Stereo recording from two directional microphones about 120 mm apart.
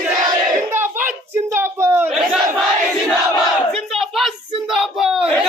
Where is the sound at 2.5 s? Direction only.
Centre (ahead or behind).